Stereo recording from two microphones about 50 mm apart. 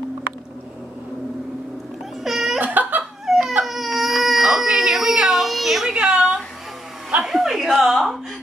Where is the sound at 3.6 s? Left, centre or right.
Centre.